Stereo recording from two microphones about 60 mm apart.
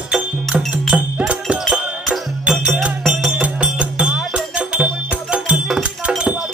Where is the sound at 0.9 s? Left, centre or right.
Centre.